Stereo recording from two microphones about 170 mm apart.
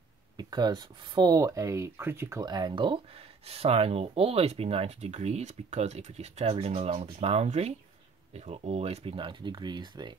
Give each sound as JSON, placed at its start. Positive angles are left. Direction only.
{"t": 0.4, "sound": "speech", "side_deg": -25}